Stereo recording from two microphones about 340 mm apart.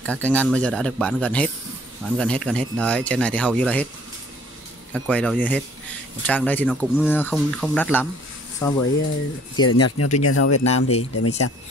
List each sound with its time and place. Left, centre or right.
0.0 s speech: centre
4.9 s speech: centre
9.7 s speech: left